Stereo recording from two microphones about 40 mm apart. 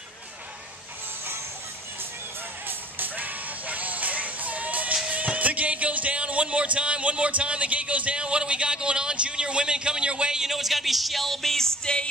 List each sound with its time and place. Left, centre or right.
3.0 s music: right
10.4 s speech: centre
11.8 s music: left